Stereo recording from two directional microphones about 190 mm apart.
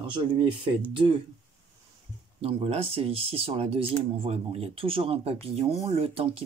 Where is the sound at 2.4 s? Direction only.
30° right (ahead or behind).